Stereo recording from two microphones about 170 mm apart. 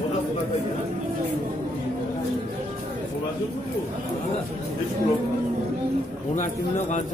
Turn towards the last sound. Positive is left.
turn(degrees=45)  # may be behind; listen again after turning